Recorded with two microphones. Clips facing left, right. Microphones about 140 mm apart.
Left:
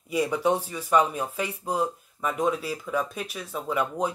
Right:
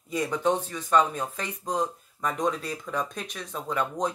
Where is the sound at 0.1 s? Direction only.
10° left (ahead or behind).